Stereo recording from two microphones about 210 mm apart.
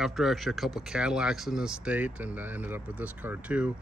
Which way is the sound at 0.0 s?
Centre (ahead or behind).